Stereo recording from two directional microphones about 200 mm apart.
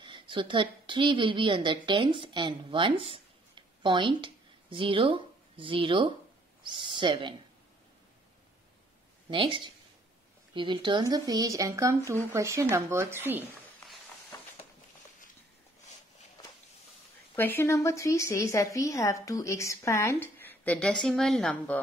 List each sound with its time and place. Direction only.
0.0 s a woman's voice: 25° right (ahead or behind)
9.3 s speech: 25° right (ahead or behind)
14.3 s a sound: 15° left (ahead or behind)
17.4 s a woman's voice: 10° left (ahead or behind)